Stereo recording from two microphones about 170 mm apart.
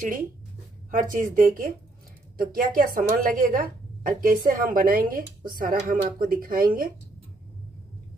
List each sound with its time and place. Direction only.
0.0 s a woman's voice: 55° right (ahead or behind)